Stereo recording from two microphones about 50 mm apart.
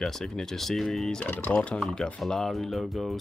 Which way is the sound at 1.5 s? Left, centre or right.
Left.